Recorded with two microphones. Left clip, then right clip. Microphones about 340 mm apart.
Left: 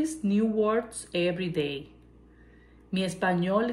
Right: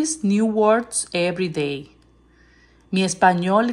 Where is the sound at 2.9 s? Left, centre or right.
Centre.